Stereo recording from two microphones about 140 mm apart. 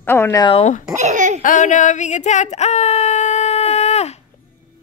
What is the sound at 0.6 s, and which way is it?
Speech, 55° left (ahead or behind).